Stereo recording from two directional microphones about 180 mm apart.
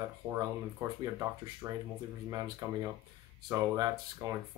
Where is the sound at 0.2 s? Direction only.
5° right (ahead or behind); by 4.4 s 20° right (ahead or behind).